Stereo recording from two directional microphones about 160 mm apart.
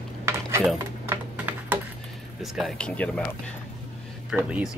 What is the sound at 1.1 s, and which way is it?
Typing, 10° right (ahead or behind).